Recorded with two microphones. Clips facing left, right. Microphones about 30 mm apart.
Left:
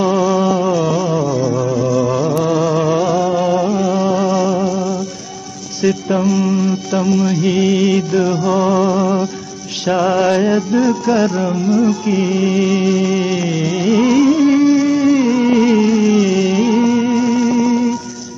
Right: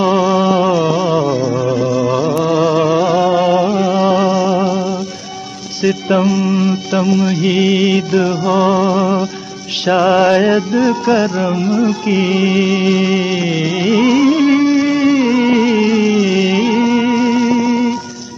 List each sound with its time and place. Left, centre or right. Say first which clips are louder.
0.0 s music: right 2 dB; right
6.3 s music: right 1 dB; centre
11.1 s music: right 1 dB; right